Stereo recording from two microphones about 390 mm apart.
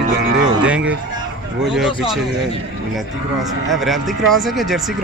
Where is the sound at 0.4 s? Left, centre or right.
Centre.